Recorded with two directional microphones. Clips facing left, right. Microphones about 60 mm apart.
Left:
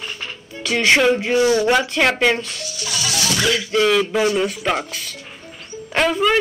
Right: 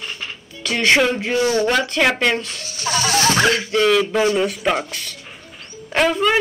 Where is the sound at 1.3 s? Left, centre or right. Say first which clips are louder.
Left 2 dB; left.